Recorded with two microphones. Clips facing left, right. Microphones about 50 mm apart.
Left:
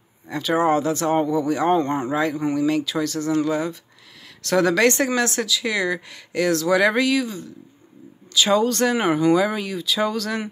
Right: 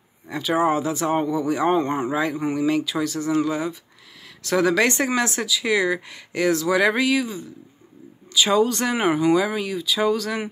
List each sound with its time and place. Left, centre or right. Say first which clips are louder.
0.3 s speech: left 1 dB; centre